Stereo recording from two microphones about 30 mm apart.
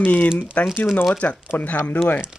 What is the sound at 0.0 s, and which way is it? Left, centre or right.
Speech, left.